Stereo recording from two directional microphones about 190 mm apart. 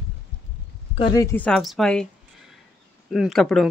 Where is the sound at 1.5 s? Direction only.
Centre (ahead or behind).